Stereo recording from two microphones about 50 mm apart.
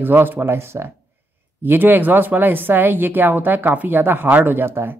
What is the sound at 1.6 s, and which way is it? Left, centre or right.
Speech, right.